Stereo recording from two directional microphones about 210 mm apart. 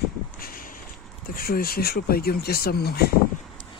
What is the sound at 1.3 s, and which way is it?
Speech, 45° left (ahead or behind).